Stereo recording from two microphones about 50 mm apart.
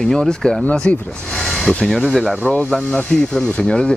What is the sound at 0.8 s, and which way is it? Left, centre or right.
Speech, left.